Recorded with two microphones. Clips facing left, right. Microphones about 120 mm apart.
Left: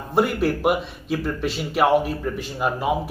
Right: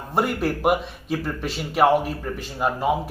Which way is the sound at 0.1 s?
Centre (ahead or behind).